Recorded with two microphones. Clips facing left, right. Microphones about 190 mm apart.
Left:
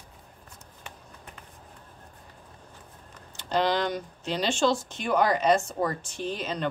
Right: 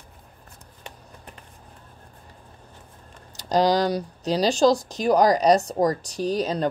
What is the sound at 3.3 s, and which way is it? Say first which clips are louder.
Speech: right 5 dB; 40° right (ahead or behind).